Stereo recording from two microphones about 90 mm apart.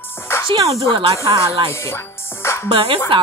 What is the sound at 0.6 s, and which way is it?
Speech, 40° right (ahead or behind).